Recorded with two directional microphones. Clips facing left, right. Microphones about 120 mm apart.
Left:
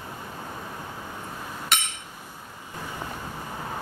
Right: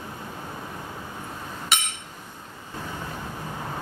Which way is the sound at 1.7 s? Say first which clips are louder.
Even; centre (ahead or behind).